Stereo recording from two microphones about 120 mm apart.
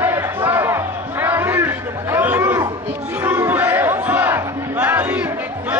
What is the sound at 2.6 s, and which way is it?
Battle cry, 15° right (ahead or behind).